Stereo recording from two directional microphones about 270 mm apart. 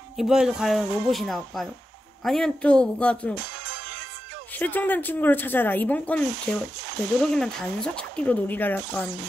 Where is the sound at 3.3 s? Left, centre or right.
Right.